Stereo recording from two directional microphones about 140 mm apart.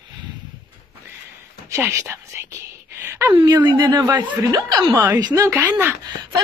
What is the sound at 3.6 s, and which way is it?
Speech, 30° right (ahead or behind).